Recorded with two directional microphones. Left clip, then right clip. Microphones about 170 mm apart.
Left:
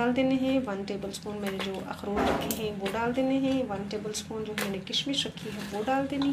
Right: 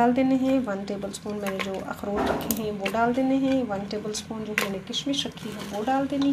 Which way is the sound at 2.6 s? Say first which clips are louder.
Right 9 dB; 45° right (ahead or behind).